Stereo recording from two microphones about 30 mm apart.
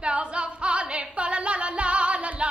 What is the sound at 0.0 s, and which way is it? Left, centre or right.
Singing, right.